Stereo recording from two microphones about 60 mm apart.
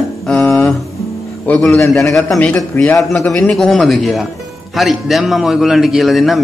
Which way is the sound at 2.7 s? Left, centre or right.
Left.